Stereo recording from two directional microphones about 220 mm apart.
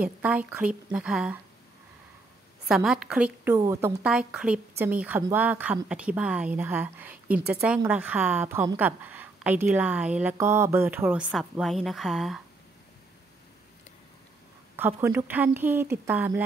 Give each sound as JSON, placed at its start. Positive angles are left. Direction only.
{"t": 0.0, "sound": "a woman's voice", "side_deg": -5}
{"t": 2.7, "sound": "a woman's voice", "side_deg": 0}
{"t": 14.8, "sound": "a woman's voice", "side_deg": -10}